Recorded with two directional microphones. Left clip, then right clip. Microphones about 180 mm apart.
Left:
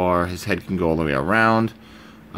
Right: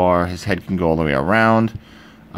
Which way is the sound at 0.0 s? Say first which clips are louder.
Right 4 dB; 15° right (ahead or behind).